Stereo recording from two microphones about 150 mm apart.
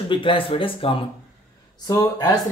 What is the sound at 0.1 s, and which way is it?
Speech, 35° left (ahead or behind).